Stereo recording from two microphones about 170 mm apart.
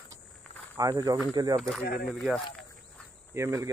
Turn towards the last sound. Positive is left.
turn(degrees=-15)  # may be behind; listen again after turning